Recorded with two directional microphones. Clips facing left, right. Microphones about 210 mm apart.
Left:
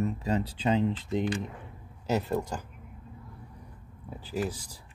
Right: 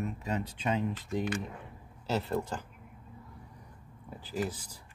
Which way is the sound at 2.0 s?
15° left (ahead or behind).